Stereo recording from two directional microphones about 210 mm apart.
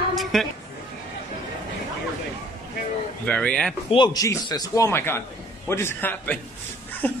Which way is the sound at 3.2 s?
5° left (ahead or behind).